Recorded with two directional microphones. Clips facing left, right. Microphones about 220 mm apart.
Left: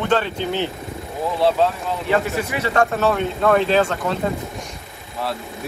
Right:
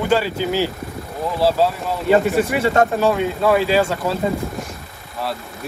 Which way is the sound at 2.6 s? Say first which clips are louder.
Right 1 dB; 25° right (ahead or behind).